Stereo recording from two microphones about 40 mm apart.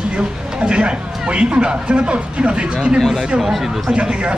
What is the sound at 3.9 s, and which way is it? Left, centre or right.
Speech, right.